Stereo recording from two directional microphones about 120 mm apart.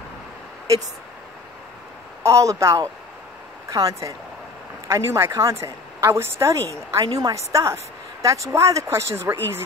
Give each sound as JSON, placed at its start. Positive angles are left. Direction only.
{"t": 2.2, "sound": "a woman's voice", "side_deg": -25}